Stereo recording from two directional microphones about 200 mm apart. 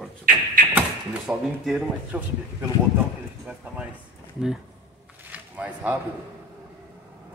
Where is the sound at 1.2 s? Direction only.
Centre (ahead or behind).